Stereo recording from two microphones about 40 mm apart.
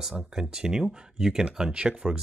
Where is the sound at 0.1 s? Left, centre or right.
Centre.